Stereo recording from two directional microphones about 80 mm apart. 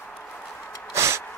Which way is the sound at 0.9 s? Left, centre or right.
Right.